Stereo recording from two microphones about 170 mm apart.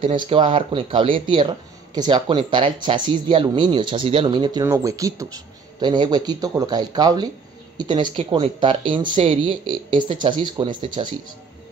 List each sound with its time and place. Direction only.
0.3 s speech: 30° right (ahead or behind)